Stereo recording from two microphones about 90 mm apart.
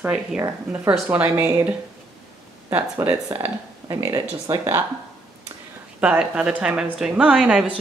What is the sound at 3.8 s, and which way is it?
Speech, 40° right (ahead or behind).